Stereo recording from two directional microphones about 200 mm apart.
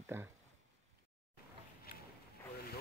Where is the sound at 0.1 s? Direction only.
10° right (ahead or behind).